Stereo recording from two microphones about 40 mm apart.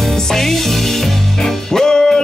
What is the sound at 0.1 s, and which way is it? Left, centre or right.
Music, centre.